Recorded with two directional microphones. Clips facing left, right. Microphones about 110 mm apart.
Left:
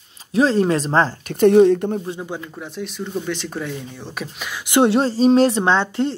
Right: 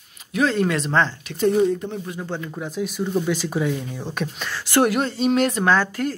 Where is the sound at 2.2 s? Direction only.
10° left (ahead or behind).